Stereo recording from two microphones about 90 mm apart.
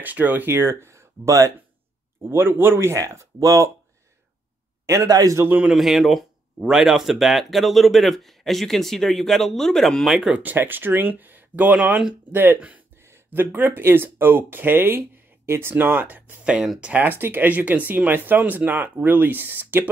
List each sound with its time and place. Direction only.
0.0 s speech: 20° right (ahead or behind); by 3.7 s 40° right (ahead or behind)
4.8 s speech: 40° right (ahead or behind)
5.4 s speech: 20° right (ahead or behind)
5.7 s speech: centre (ahead or behind)
10.3 s speech: 20° right (ahead or behind)
16.9 s speech: 25° right (ahead or behind)